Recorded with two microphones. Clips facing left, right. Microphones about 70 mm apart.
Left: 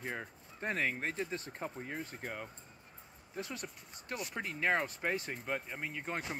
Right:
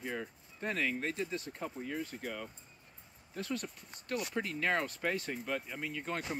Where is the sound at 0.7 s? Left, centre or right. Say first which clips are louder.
Even; left.